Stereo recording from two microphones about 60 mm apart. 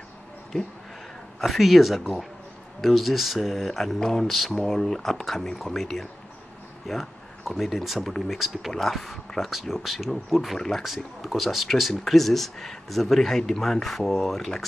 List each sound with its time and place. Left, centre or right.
1.4 s speech: centre